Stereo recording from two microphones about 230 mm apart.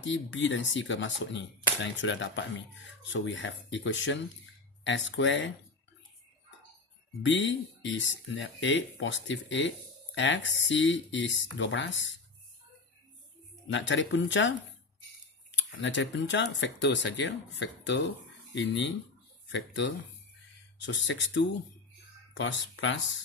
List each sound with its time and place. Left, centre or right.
0.0 s speech: left
7.2 s speech: left
13.7 s speech: left
15.5 s speech: left